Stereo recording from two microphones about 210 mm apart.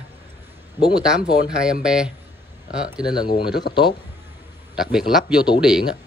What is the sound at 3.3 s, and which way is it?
Speech, 50° left (ahead or behind).